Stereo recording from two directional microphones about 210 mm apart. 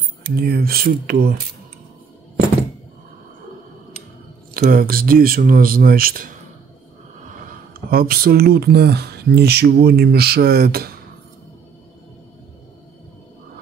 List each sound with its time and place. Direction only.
0.4 s speech: 45° right (ahead or behind)
4.6 s speech: 45° right (ahead or behind)
7.9 s speech: 45° right (ahead or behind)